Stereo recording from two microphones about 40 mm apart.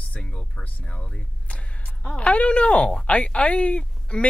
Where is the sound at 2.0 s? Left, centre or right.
Left.